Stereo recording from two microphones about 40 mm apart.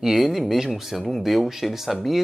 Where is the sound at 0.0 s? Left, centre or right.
Centre.